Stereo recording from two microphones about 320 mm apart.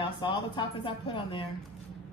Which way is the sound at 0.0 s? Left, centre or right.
Centre.